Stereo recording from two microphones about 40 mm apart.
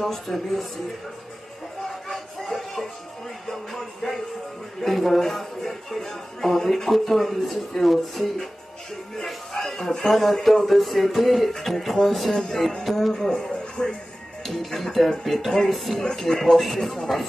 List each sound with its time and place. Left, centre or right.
0.0 s speech: centre
1.9 s a sound: centre
3.4 s music: centre
4.8 s speech: centre
9.1 s a sound: centre
10.0 s speech: centre
13.1 s speech: centre
14.4 s speech: centre
16.0 s speech: centre